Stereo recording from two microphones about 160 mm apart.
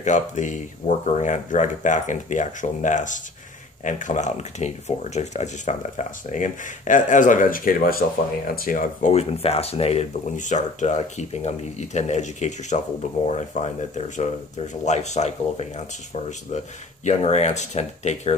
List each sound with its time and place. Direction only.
0.0 s speech: 50° left (ahead or behind)
9.1 s speech: 40° left (ahead or behind)